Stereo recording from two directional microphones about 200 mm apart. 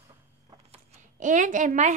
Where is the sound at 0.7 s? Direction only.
35° right (ahead or behind).